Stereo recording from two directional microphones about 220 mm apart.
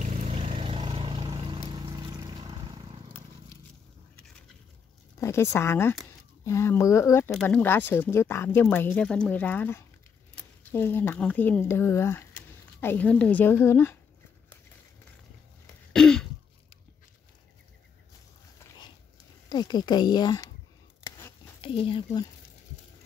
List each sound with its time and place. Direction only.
0.0 s vehicle: 25° right (ahead or behind)
5.2 s speech: 10° left (ahead or behind)
15.9 s throat clearing: 5° left (ahead or behind)
19.5 s speech: 20° left (ahead or behind)
21.0 s a sound: 20° left (ahead or behind)